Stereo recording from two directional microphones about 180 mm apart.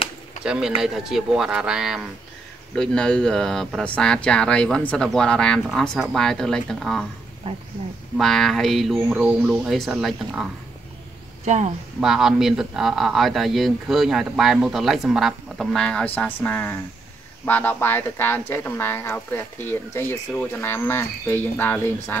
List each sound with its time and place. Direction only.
0.5 s speech: 5° right (ahead or behind)
8.2 s speech: centre (ahead or behind)
11.4 s speech: 40° right (ahead or behind)
12.0 s speech: centre (ahead or behind)